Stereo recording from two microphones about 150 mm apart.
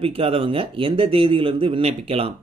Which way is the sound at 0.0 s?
40° right (ahead or behind).